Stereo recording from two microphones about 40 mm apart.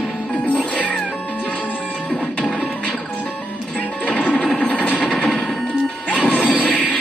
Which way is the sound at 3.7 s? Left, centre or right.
Left.